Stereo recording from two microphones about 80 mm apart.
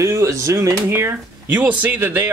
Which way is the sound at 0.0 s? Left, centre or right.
Right.